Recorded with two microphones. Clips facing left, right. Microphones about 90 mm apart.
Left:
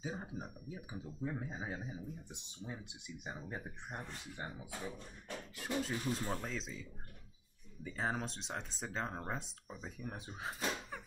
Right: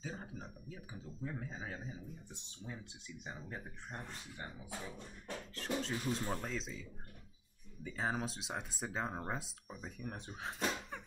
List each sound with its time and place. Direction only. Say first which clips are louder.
0.0 s speech: left 3 dB; 15° left (ahead or behind)
5.8 s speech: left 2 dB; 5° left (ahead or behind)